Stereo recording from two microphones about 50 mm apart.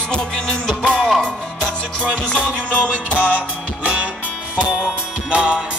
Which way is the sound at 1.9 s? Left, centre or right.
Left.